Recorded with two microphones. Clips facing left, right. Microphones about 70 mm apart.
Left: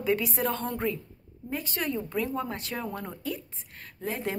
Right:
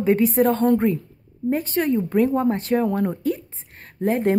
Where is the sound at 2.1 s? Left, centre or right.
Right.